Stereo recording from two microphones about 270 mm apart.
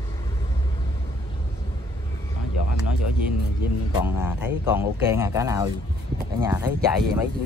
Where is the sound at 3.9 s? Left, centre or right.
Centre.